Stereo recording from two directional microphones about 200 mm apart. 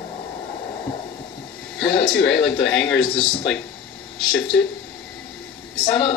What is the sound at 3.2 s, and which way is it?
Speech, 25° left (ahead or behind).